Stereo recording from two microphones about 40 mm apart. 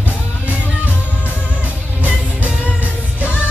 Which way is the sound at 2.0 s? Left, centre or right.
Right.